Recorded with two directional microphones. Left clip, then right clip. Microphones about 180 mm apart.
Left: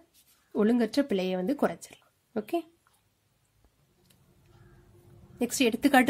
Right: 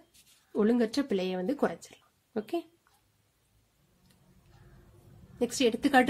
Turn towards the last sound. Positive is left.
turn(degrees=35)  # may be behind; listen again after turning